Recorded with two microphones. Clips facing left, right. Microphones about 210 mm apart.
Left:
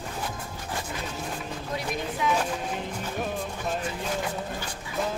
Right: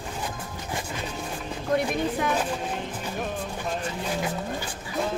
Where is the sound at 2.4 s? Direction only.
Centre (ahead or behind).